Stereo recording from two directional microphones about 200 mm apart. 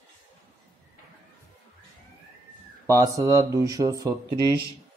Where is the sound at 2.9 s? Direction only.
15° right (ahead or behind).